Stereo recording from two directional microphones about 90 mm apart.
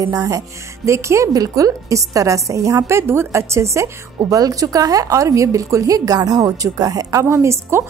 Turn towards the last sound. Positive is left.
turn(degrees=-30)  # may be behind; listen again after turning